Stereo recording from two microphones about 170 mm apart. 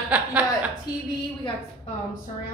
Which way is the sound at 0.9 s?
20° left (ahead or behind).